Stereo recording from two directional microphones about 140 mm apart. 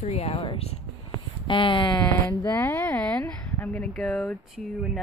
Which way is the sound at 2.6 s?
15° left (ahead or behind).